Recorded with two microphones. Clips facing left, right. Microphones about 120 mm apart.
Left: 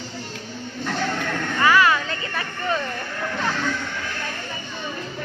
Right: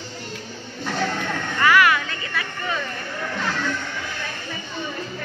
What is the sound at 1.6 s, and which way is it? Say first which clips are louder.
Music: even; 25° left (ahead or behind).